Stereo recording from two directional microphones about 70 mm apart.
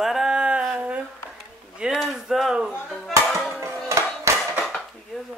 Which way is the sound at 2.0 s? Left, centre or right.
Centre.